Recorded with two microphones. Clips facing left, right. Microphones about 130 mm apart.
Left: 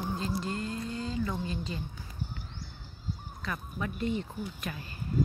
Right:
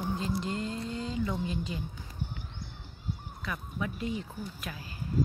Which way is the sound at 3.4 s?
5° right (ahead or behind).